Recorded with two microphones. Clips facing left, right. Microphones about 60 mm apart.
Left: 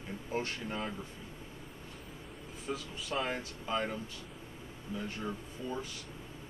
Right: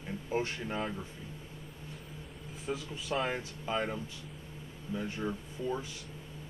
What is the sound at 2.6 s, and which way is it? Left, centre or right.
A man's voice, centre.